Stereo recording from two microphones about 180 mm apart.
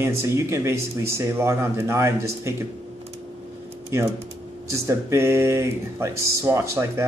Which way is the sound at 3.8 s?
15° right (ahead or behind).